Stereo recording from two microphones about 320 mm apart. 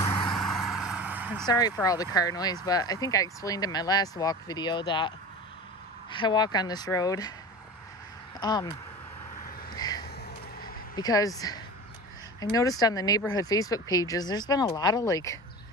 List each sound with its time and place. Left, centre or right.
0.0 s vehicle: centre
0.3 s vehicle: centre
1.5 s speech: centre
8.4 s speech: centre
9.7 s a sound: centre
11.0 s speech: centre